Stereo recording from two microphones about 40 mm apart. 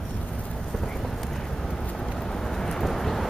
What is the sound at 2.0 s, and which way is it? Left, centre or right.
Vehicle, centre.